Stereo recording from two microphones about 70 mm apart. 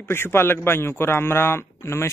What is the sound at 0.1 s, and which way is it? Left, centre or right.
A man's voice, left.